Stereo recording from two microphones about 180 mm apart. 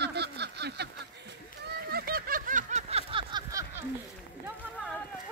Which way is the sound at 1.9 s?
60° right (ahead or behind).